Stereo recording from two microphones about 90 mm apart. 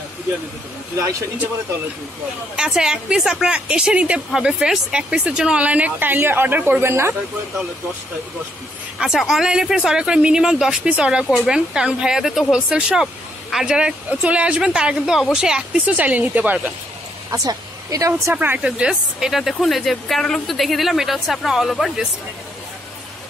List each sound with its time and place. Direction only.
0.9 s speech: 30° right (ahead or behind)
2.5 s a woman's voice: 5° right (ahead or behind); by 7.2 s 30° right (ahead or behind)
9.0 s a woman's voice: centre (ahead or behind); by 16.7 s 20° right (ahead or behind)
17.3 s speech: 40° right (ahead or behind)
18.3 s speech: 20° right (ahead or behind); by 22.0 s centre (ahead or behind)